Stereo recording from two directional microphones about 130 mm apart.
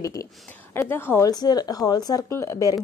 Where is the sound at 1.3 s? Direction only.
30° left (ahead or behind).